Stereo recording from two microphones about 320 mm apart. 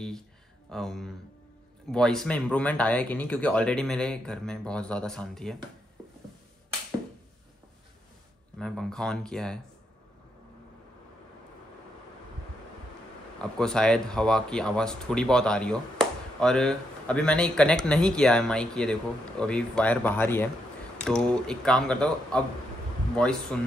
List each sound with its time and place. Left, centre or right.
0.7 s speech: centre
8.5 s speech: centre
13.4 s speech: centre